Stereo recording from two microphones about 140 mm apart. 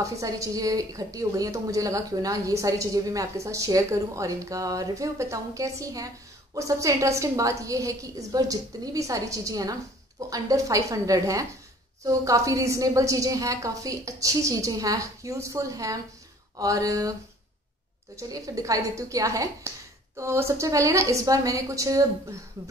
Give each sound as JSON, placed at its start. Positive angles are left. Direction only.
{"t": 0.0, "sound": "a woman's voice", "side_deg": -25}
{"t": 18.1, "sound": "a woman's voice", "side_deg": -25}